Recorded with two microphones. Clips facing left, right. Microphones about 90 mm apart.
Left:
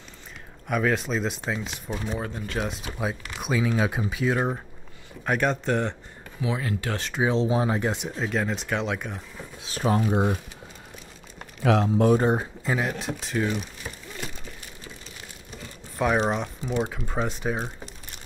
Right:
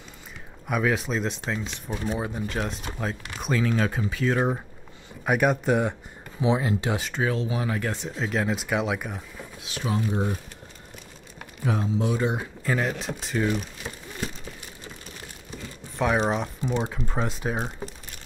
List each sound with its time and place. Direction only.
0.7 s speech: 5° right (ahead or behind)
2.0 s speech: 15° right (ahead or behind)
2.4 s speech: centre (ahead or behind)
4.3 s speech: centre (ahead or behind)
6.4 s speech: 25° right (ahead or behind)
7.2 s speech: 30° left (ahead or behind)
8.1 s speech: centre (ahead or behind)
9.6 s speech: 40° left (ahead or behind)
11.6 s speech: 90° left
12.0 s speech: 45° left (ahead or behind)
12.7 s speech: 5° left (ahead or behind)
16.0 s speech: centre (ahead or behind)